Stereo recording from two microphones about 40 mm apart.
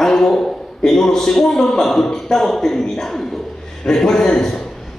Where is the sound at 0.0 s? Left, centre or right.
Centre.